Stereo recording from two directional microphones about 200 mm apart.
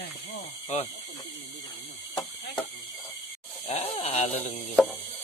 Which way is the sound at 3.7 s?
30° left (ahead or behind).